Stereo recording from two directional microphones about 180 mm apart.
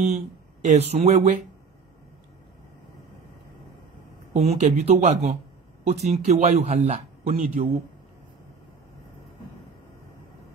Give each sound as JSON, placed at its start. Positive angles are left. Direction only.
{"t": 0.6, "sound": "speech", "side_deg": -35}
{"t": 4.3, "sound": "speech", "side_deg": -40}